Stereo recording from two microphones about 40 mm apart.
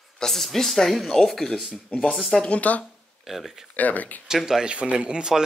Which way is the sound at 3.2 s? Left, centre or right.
Centre.